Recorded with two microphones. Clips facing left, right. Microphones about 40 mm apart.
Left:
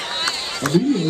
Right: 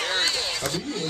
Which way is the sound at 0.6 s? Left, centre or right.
Left.